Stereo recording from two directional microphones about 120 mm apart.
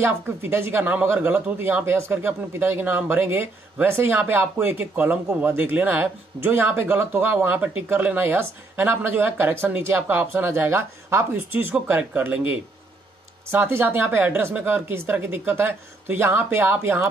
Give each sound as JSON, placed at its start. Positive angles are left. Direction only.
{"t": 0.0, "sound": "speech", "side_deg": -20}